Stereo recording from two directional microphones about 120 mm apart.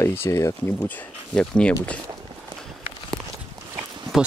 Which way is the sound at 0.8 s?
10° left (ahead or behind).